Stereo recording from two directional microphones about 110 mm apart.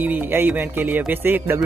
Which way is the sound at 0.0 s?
15° right (ahead or behind).